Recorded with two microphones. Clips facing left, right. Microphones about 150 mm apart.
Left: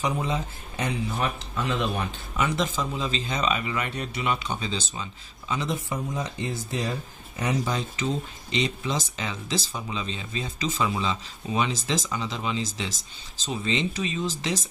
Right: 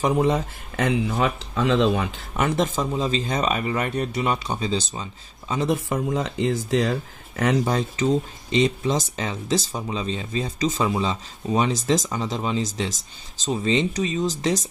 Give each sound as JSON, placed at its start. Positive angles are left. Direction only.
{"t": 0.0, "sound": "speech", "side_deg": -70}
{"t": 2.3, "sound": "speech", "side_deg": -50}
{"t": 5.7, "sound": "speech", "side_deg": -80}
{"t": 7.6, "sound": "speech", "side_deg": -45}